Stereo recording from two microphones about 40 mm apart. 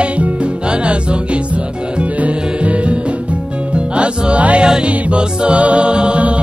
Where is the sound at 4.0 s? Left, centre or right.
Right.